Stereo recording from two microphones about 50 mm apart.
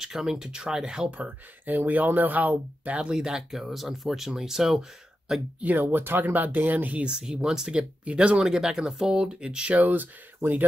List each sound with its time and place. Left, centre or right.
0.0 s speech: centre
1.1 s speech: right
3.0 s speech: centre
5.8 s speech: right
7.1 s speech: centre
8.0 s speech: right
8.4 s speech: centre
9.8 s speech: right